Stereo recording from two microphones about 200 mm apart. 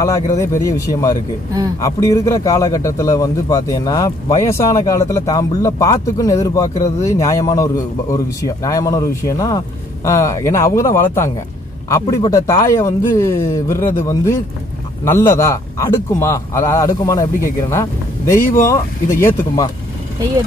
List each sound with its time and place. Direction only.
0.0 s a man's voice: 15° left (ahead or behind)
15.0 s a man's voice: 10° left (ahead or behind)